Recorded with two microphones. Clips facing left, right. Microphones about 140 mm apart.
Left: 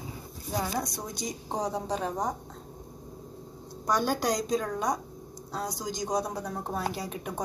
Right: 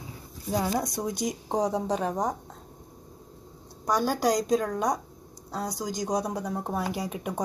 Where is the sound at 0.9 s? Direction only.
50° right (ahead or behind).